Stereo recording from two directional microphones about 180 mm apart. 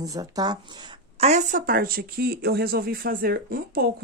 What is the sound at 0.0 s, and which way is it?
Speech, 20° right (ahead or behind).